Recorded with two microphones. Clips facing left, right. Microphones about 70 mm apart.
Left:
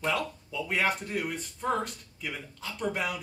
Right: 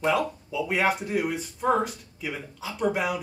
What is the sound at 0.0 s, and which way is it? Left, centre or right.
A man's voice, centre.